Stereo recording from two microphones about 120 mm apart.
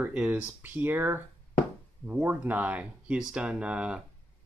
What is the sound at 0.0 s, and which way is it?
Speech, 10° right (ahead or behind).